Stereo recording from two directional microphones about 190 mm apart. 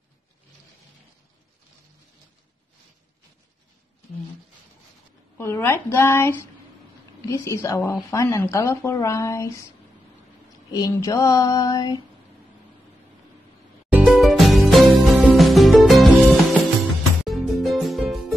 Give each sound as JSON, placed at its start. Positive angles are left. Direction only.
{"t": 5.4, "sound": "a woman's voice", "side_deg": 15}
{"t": 10.7, "sound": "speech", "side_deg": 20}
{"t": 13.9, "sound": "music", "side_deg": 0}